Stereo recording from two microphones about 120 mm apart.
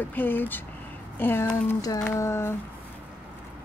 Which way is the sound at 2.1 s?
25° left (ahead or behind).